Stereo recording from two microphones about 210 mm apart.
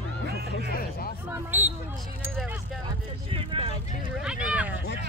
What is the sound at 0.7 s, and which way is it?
Speech, 45° left (ahead or behind).